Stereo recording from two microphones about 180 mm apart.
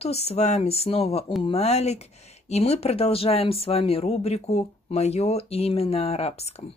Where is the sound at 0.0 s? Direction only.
35° left (ahead or behind).